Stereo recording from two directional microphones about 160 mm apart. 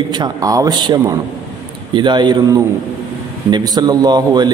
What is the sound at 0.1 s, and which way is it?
A man's voice, 25° right (ahead or behind).